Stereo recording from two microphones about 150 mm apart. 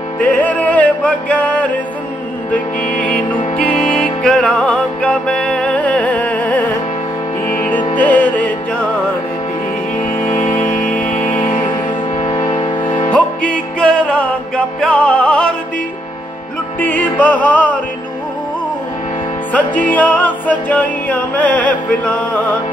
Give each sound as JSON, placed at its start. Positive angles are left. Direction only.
{"t": 0.2, "sound": "music", "side_deg": 10}
{"t": 3.9, "sound": "music", "side_deg": 5}
{"t": 10.0, "sound": "music", "side_deg": 55}
{"t": 11.6, "sound": "music", "side_deg": 30}
{"t": 13.1, "sound": "music", "side_deg": 10}
{"t": 16.8, "sound": "music", "side_deg": 10}
{"t": 19.5, "sound": "music", "side_deg": 10}